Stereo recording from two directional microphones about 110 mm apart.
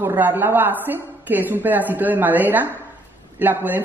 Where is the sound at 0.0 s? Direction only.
20° right (ahead or behind).